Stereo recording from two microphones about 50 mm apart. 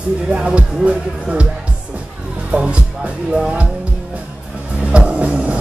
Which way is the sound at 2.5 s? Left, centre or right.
Right.